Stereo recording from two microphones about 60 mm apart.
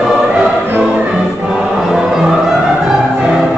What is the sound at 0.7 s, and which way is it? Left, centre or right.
Music, right.